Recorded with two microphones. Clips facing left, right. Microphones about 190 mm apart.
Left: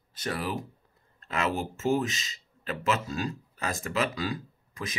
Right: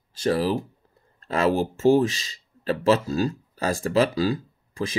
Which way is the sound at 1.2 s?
35° right (ahead or behind).